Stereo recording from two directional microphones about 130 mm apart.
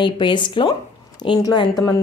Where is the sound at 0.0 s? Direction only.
35° left (ahead or behind).